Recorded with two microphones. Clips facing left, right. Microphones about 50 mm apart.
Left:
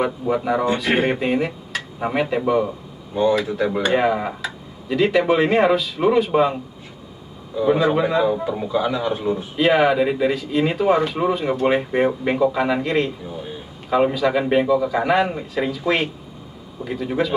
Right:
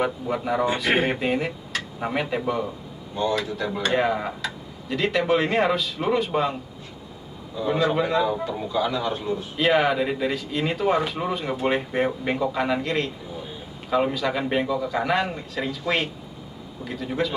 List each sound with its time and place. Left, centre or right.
0.0 s speech: centre
3.4 s speech: centre
3.8 s a man's voice: centre
9.6 s a man's voice: centre